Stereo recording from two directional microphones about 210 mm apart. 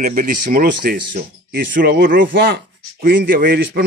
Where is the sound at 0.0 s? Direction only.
40° right (ahead or behind).